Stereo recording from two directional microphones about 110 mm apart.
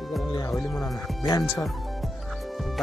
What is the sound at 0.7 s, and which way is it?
Speech, 35° left (ahead or behind).